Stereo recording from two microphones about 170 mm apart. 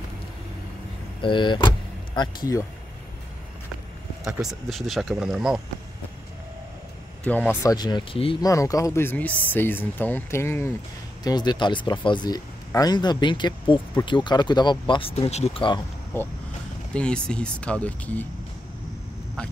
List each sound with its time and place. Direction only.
1.2 s speech: 30° left (ahead or behind)
4.2 s speech: centre (ahead or behind)
7.3 s speech: 10° left (ahead or behind)
7.6 s speech: 25° left (ahead or behind)
8.5 s speech: 20° left (ahead or behind)
16.1 s speech: 15° left (ahead or behind)